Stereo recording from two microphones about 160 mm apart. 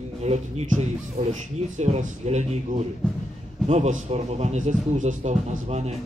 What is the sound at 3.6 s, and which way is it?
Speech, 45° right (ahead or behind).